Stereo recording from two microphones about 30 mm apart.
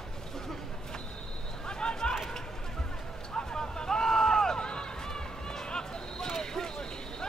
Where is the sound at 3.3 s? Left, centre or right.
Left.